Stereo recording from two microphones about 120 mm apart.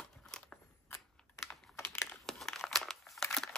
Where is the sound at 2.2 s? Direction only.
Centre (ahead or behind).